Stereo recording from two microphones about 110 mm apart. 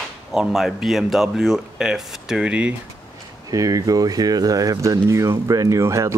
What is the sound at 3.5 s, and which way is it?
Speech, 30° right (ahead or behind).